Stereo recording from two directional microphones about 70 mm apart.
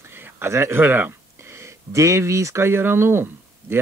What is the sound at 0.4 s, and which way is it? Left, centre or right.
Speech, right.